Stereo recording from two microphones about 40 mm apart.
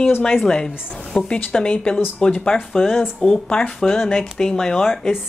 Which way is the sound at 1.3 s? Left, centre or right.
Left.